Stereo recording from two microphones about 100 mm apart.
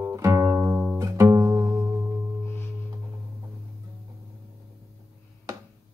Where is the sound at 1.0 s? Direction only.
35° right (ahead or behind).